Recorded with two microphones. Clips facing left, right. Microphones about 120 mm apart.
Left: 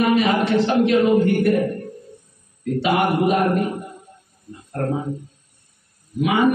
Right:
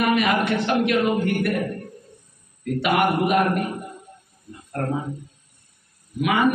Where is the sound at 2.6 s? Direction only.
30° left (ahead or behind).